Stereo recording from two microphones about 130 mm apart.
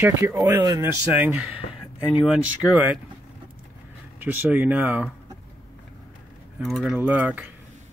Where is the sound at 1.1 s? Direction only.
10° right (ahead or behind).